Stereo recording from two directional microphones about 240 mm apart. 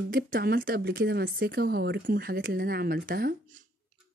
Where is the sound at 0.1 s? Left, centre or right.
Right.